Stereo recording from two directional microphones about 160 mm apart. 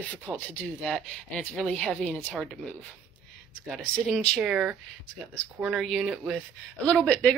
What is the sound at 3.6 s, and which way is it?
Speech, centre (ahead or behind).